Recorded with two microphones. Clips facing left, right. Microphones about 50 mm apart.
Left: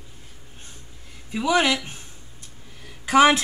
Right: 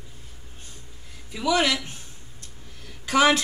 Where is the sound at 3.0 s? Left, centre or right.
Left.